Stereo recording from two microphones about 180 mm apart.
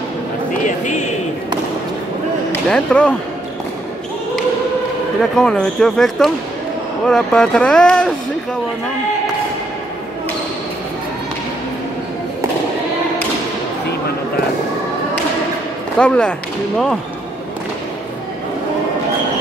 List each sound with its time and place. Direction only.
0.7 s a sound: 40° left (ahead or behind)
2.7 s speech: 5° left (ahead or behind)
5.2 s speech: 5° left (ahead or behind)
16.0 s speech: 5° left (ahead or behind)